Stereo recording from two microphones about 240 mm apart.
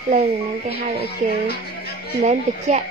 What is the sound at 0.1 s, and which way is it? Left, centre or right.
Speech, right.